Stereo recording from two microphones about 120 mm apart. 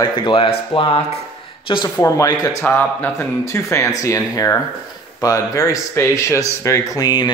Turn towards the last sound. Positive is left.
turn(degrees=35)  # may be behind; listen again after turning